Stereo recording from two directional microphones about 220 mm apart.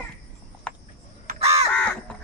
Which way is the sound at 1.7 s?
5° left (ahead or behind).